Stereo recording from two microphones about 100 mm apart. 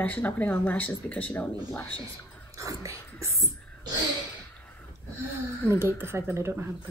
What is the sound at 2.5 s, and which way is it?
Dog, 35° right (ahead or behind).